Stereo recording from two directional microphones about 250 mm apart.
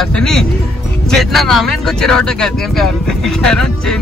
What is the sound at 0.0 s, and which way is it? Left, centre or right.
Speech, centre.